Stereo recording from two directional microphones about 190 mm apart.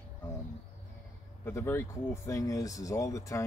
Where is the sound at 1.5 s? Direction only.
15° left (ahead or behind).